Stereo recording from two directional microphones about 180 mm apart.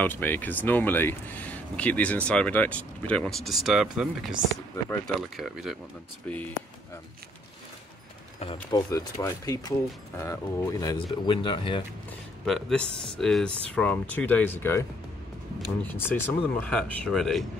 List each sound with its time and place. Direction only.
0.0 s speech: 10° left (ahead or behind)
8.7 s speech: 20° left (ahead or behind)
12.4 s speech: centre (ahead or behind)
15.9 s speech: 10° left (ahead or behind)